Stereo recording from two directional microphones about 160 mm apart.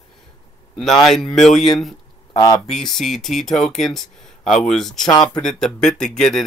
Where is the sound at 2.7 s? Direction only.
Centre (ahead or behind).